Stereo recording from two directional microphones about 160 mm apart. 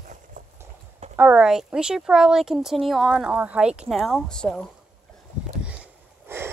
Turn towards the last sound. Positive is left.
turn(degrees=-15)  # may be behind; listen again after turning